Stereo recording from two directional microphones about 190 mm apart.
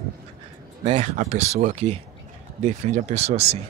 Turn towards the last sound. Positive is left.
turn(degrees=-35)  # may be behind; listen again after turning